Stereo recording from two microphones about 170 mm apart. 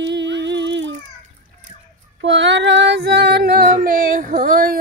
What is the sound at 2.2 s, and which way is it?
Female singing, 90° right.